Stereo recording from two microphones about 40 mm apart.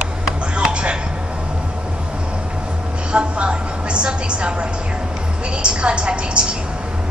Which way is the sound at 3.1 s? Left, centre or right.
Right.